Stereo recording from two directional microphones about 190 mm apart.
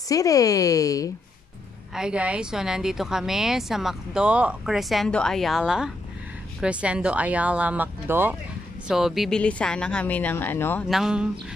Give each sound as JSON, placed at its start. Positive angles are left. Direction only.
{"t": 0.1, "sound": "speech", "side_deg": 20}
{"t": 2.0, "sound": "speech", "side_deg": -5}
{"t": 10.9, "sound": "speech", "side_deg": -5}